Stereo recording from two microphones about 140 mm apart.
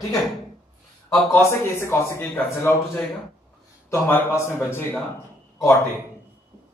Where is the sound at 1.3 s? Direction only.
20° left (ahead or behind).